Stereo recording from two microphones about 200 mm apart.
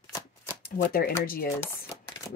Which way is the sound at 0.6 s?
50° left (ahead or behind).